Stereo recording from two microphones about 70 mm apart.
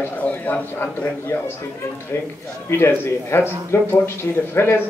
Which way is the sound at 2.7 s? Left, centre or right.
Left.